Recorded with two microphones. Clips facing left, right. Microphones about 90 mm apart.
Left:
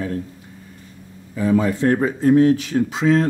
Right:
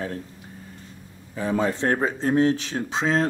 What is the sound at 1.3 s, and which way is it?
Speech, 30° right (ahead or behind).